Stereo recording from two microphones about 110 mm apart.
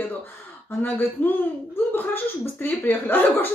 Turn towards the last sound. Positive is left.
turn(degrees=20)  # may be behind; listen again after turning